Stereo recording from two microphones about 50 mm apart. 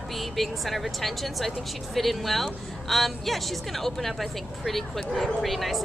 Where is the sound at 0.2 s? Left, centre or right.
Centre.